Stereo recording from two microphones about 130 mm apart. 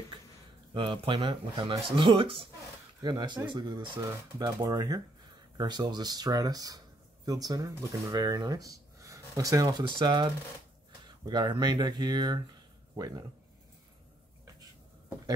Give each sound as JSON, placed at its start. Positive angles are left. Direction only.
{"t": 0.7, "sound": "speech", "side_deg": -40}